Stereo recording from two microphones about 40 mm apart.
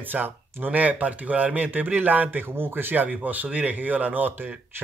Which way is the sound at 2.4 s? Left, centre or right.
Right.